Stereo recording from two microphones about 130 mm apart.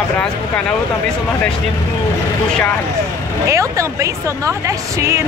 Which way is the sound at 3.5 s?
25° right (ahead or behind).